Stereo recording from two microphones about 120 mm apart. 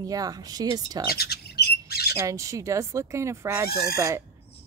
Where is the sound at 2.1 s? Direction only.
25° right (ahead or behind).